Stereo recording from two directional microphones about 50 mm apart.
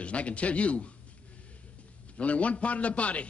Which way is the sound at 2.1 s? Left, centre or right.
Left.